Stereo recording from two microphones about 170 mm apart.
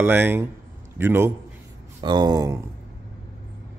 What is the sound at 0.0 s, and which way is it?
A man's voice, 10° right (ahead or behind).